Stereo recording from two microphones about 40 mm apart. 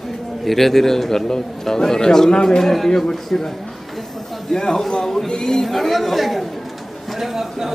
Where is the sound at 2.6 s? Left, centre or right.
Centre.